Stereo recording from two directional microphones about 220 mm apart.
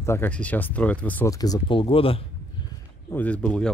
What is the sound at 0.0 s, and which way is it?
Speech, 10° left (ahead or behind).